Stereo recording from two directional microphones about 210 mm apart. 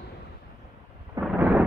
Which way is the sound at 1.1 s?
5° right (ahead or behind).